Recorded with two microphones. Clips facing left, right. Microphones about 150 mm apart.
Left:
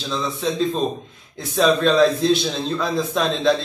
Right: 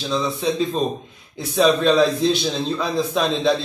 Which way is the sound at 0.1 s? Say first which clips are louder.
Right 2 dB; 5° right (ahead or behind).